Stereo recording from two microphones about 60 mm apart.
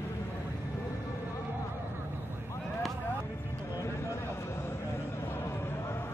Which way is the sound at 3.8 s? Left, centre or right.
Left.